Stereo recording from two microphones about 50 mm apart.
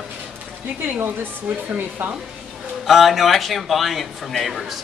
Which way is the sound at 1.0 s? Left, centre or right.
Right.